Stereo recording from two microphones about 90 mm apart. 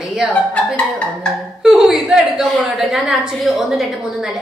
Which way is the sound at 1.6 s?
5° right (ahead or behind).